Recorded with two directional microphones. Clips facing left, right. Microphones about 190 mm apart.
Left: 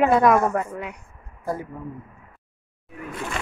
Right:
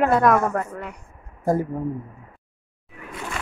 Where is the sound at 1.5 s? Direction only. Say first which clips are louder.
Right 7 dB; 40° right (ahead or behind).